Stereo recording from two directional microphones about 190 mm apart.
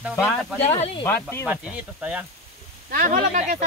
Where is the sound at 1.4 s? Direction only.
5° right (ahead or behind).